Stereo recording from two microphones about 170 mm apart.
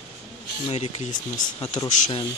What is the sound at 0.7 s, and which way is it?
Speech, 40° left (ahead or behind).